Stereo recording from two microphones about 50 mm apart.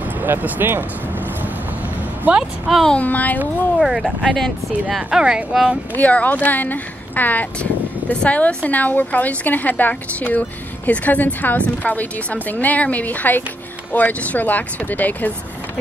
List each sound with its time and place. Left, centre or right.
0.2 s speech: right
2.3 s speech: right
2.7 s speech: centre
3.0 s a woman's voice: left
3.8 s speech: centre
4.2 s speech: centre
4.8 s speech: centre
5.9 s a woman's voice: left
8.1 s a woman's voice: left